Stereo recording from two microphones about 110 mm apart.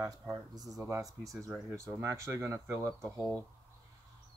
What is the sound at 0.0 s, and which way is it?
Speech, 35° right (ahead or behind).